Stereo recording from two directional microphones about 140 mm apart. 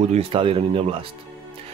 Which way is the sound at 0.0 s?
50° right (ahead or behind).